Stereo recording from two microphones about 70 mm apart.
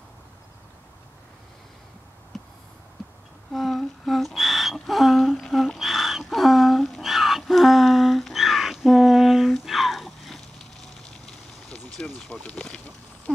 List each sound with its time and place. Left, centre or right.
3.5 s humming: centre
12.3 s speech: centre